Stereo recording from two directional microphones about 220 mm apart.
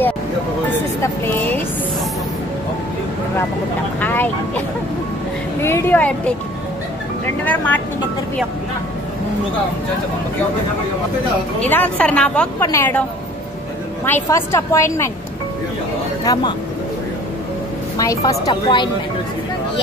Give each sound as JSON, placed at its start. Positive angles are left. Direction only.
{"t": 1.0, "sound": "a woman's voice", "side_deg": 10}
{"t": 4.0, "sound": "a woman's voice", "side_deg": 10}
{"t": 7.4, "sound": "a woman's voice", "side_deg": 5}
{"t": 11.6, "sound": "a woman's voice", "side_deg": 5}
{"t": 14.0, "sound": "a woman's voice", "side_deg": 10}
{"t": 17.9, "sound": "a woman's voice", "side_deg": 15}